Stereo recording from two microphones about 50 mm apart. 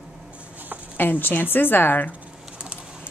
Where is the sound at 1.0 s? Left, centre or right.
Left.